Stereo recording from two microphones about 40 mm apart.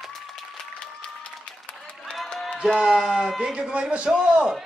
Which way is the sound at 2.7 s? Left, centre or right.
Centre.